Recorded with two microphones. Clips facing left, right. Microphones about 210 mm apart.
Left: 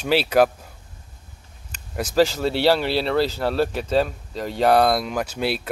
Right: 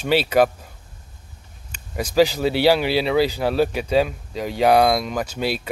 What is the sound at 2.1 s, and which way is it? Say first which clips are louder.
Speech: right 2 dB; centre (ahead or behind).